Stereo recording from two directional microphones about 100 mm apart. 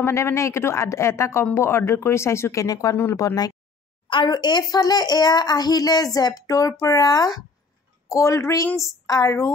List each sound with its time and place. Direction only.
0.0 s a woman's voice: 30° left (ahead or behind)
4.1 s a child's voice: 50° left (ahead or behind); by 9.5 s 30° left (ahead or behind)